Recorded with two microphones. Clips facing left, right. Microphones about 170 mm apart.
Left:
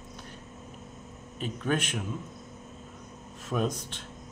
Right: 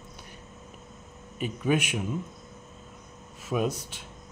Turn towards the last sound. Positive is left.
turn(degrees=-5)  # may be behind; listen again after turning